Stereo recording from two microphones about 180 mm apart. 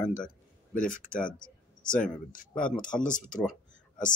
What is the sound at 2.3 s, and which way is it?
Speech, 5° left (ahead or behind).